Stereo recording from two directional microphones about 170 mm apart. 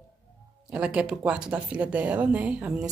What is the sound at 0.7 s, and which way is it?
Speech, 5° right (ahead or behind).